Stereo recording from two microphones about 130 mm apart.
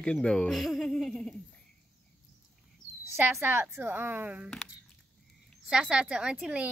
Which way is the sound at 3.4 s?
15° right (ahead or behind).